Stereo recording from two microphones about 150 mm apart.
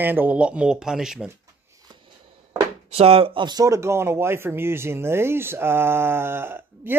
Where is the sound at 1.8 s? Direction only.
30° right (ahead or behind).